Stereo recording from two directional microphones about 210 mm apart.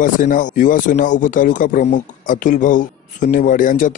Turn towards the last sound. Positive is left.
turn(degrees=40)  # may be behind; listen again after turning